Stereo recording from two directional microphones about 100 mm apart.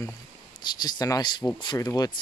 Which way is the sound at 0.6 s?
45° left (ahead or behind).